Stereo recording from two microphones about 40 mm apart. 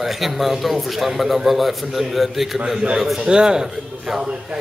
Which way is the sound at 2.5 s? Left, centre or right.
Centre.